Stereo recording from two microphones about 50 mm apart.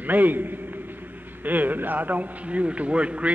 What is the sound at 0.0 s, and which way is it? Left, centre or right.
A man's voice, right.